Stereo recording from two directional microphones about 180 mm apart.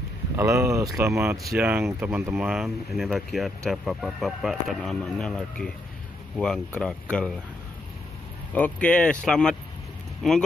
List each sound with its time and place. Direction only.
0.4 s speech: 15° right (ahead or behind); by 7.3 s 5° left (ahead or behind)
8.5 s speech: 10° left (ahead or behind)